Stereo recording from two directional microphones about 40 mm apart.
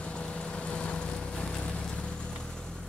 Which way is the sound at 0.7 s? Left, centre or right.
Left.